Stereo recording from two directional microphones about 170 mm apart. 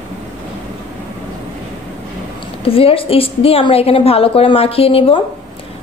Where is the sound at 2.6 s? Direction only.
35° left (ahead or behind).